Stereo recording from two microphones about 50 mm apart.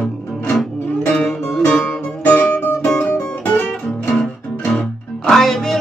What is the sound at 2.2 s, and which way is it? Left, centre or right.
Music, left.